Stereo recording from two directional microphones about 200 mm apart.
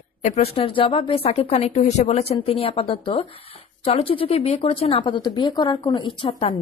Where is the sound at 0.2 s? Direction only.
30° left (ahead or behind).